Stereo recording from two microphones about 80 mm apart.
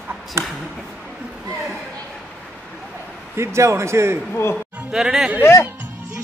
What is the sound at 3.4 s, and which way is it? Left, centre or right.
Speech, right.